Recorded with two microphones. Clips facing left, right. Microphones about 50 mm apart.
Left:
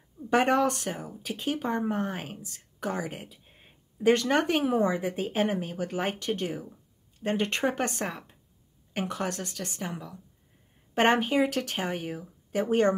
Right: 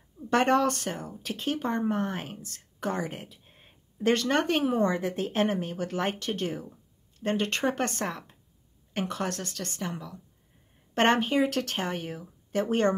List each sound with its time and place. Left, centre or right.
0.3 s speech: centre